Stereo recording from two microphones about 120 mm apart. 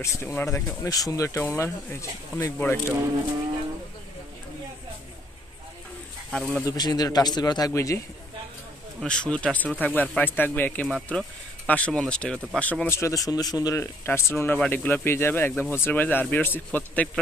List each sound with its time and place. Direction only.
0.0 s speech: 20° left (ahead or behind)
6.3 s speech: 5° left (ahead or behind)
6.6 s speech: 35° left (ahead or behind)
9.0 s speech: 10° left (ahead or behind); by 13.8 s 30° left (ahead or behind)
14.0 s speech: 20° left (ahead or behind)